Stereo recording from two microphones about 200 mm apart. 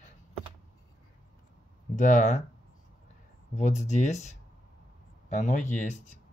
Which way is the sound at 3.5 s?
35° left (ahead or behind).